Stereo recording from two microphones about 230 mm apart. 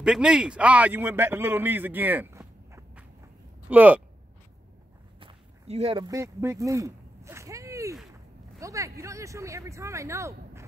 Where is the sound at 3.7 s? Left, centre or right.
Centre.